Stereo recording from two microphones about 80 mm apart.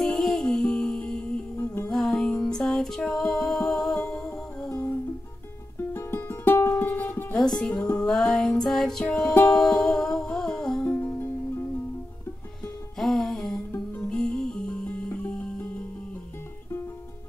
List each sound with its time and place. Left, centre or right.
0.0 s music: centre
5.9 s music: left
7.4 s music: centre
9.0 s music: centre
9.6 s music: centre
12.9 s music: centre